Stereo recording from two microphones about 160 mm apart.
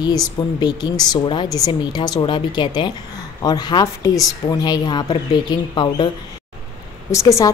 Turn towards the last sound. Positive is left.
turn(degrees=20)  # may be behind; listen again after turning